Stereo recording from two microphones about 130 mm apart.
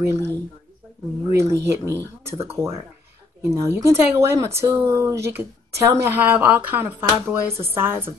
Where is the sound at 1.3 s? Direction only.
20° right (ahead or behind).